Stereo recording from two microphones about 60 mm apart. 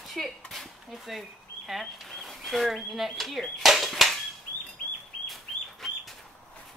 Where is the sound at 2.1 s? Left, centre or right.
Centre.